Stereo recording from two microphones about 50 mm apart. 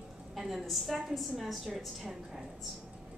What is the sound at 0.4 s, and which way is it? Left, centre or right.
A woman's voice, centre.